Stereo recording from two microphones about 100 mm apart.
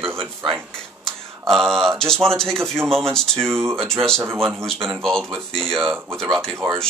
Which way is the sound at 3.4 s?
25° right (ahead or behind).